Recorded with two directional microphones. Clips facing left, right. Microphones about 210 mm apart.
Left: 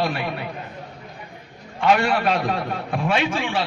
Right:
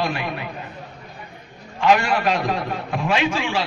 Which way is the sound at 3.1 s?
55° left (ahead or behind).